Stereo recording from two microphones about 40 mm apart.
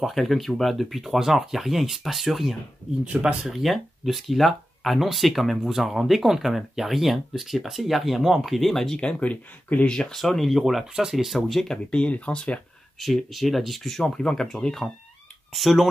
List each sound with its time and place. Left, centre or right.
0.1 s speech: centre
3.1 s speech: right
3.4 s speech: centre
9.0 s speech: left
9.8 s speech: centre
10.1 s speech: centre
10.6 s speech: centre
11.6 s speech: centre
13.0 s speech: centre
14.0 s speech: centre
15.5 s speech: centre